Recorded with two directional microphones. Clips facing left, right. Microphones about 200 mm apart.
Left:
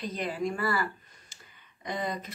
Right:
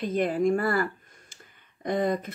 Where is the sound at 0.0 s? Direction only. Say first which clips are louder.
Right 8 dB; 50° right (ahead or behind).